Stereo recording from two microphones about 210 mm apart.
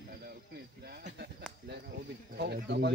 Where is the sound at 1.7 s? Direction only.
50° right (ahead or behind).